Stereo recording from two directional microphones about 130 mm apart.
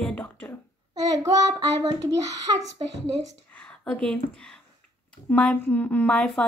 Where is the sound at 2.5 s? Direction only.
40° right (ahead or behind).